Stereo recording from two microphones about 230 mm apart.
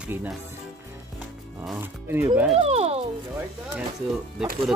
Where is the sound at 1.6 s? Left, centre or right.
Centre.